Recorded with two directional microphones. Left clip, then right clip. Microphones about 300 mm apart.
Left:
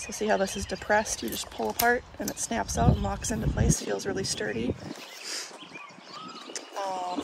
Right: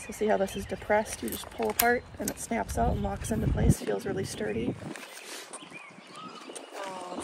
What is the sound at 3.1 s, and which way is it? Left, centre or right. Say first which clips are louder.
Speech: left 1 dB; left.